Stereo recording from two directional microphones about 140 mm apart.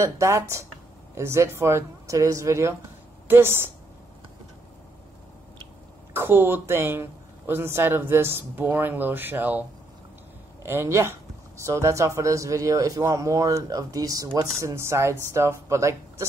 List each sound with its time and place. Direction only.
0.0 s speech: 20° right (ahead or behind)
6.1 s speech: 15° right (ahead or behind)